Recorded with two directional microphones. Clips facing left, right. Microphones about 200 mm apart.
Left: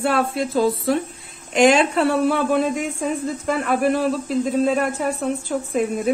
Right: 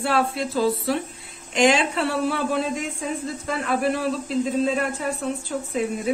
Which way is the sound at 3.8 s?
45° left (ahead or behind).